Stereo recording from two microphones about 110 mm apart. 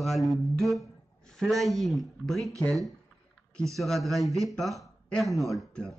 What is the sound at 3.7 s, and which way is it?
A woman's voice, centre (ahead or behind).